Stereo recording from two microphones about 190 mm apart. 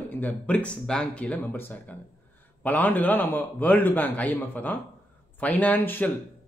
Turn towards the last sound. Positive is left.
turn(degrees=10)  # may be behind; listen again after turning